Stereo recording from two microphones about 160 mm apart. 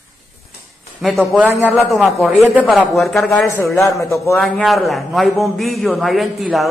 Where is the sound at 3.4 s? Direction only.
15° left (ahead or behind).